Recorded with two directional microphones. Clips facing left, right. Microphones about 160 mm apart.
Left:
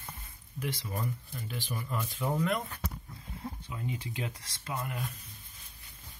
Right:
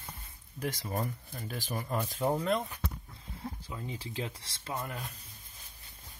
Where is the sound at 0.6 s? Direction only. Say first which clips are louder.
Right 2 dB; 45° right (ahead or behind).